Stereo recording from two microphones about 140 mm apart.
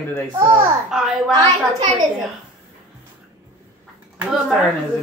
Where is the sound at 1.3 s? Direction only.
30° right (ahead or behind).